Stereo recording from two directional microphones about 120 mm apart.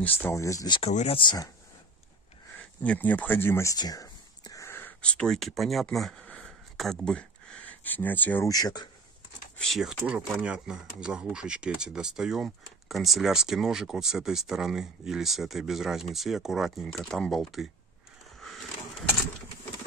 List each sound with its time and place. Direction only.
0.0 s speech: 20° left (ahead or behind)
0.8 s speech: 60° left (ahead or behind)
1.2 s speech: 35° left (ahead or behind)
2.8 s speech: 10° left (ahead or behind)
3.7 s whispering: 30° left (ahead or behind); by 8.5 s 15° left (ahead or behind)
8.5 s speech: 30° left (ahead or behind)
9.6 s speech: centre (ahead or behind)